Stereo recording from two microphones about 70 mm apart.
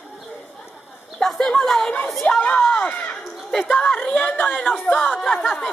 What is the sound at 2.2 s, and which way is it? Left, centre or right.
Speech, left.